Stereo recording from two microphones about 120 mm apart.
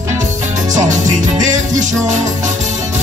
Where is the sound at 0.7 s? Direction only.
90° right.